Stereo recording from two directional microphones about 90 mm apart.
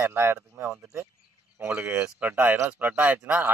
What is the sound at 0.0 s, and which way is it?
Speech, 25° right (ahead or behind).